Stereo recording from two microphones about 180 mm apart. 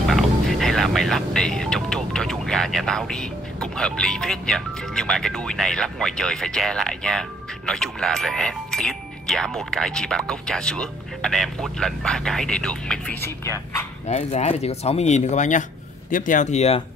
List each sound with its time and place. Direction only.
0.1 s speech: centre (ahead or behind)
14.0 s speech: 35° left (ahead or behind)